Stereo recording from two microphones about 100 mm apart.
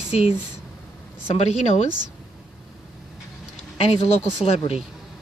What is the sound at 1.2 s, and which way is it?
Speech, 90° left.